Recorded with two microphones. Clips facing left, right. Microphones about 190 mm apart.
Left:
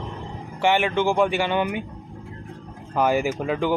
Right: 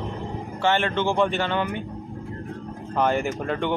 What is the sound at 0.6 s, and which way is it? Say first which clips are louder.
Speech: left 2 dB; 15° left (ahead or behind).